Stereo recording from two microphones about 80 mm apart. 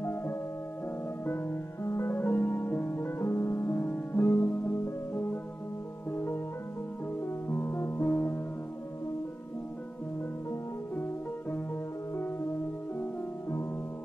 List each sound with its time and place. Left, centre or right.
0.0 s music: left
7.4 s music: left